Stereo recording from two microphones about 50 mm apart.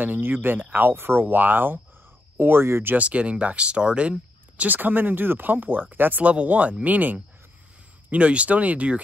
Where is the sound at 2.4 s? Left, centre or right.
Right.